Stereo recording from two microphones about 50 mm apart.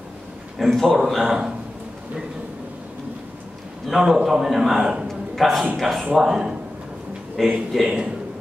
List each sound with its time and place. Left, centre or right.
0.6 s a man's voice: centre
4.0 s a man's voice: centre
5.0 s a sound: centre
5.8 s a man's voice: centre
7.4 s speech: centre